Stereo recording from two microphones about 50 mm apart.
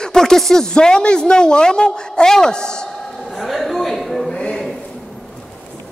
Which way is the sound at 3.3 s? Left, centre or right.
Centre.